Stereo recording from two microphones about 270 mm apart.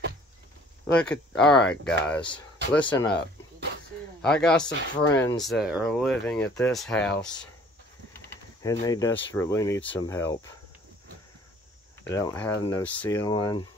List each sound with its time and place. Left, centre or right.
0.8 s speech: centre
4.2 s speech: centre
8.7 s speech: centre
12.1 s speech: centre